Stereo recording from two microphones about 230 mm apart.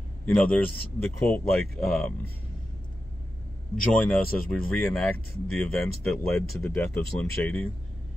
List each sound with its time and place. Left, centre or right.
0.2 s a man's voice: centre
3.9 s speech: centre